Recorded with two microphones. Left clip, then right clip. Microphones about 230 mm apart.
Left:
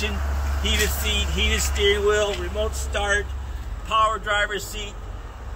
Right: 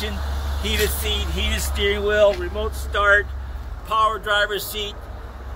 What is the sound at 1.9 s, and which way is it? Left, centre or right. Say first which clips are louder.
Speech: right 6 dB; right.